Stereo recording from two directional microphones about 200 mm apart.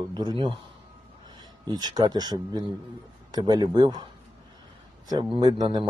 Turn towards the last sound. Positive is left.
turn(degrees=-20)  # may be behind; listen again after turning